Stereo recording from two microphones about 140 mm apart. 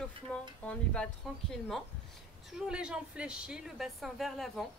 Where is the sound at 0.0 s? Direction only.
10° left (ahead or behind).